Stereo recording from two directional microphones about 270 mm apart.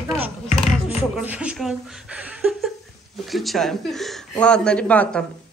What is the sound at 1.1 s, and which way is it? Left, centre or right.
Speech, centre.